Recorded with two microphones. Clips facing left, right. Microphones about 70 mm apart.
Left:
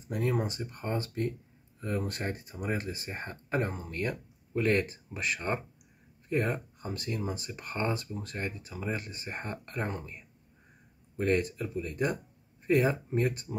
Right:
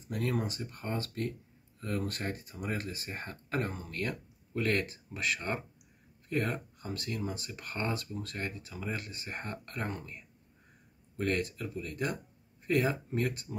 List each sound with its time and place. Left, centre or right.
0.1 s speech: centre